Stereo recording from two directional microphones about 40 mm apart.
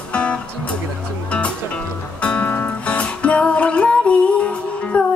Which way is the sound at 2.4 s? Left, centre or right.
Left.